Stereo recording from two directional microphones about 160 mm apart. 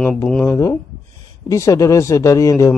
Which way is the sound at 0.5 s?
20° left (ahead or behind).